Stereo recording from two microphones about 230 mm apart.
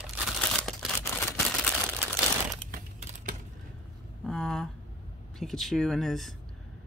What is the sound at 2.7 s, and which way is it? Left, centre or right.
Crumpling, right.